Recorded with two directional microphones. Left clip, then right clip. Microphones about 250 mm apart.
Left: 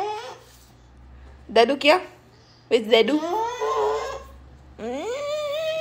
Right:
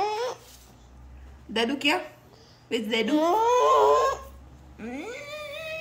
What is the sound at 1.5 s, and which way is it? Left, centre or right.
A woman's voice, centre.